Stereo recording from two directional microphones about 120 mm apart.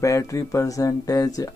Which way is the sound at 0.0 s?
25° left (ahead or behind).